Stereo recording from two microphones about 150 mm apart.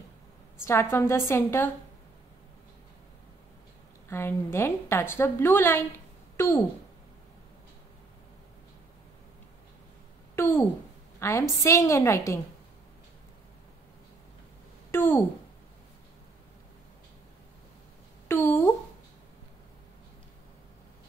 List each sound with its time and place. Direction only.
0.7 s a woman's voice: 20° left (ahead or behind)
4.1 s a woman's voice: 15° left (ahead or behind)
10.3 s a sound: 15° left (ahead or behind)
11.1 s a woman's voice: 20° left (ahead or behind)
14.9 s a woman's voice: 15° left (ahead or behind)
18.3 s speech: 15° left (ahead or behind)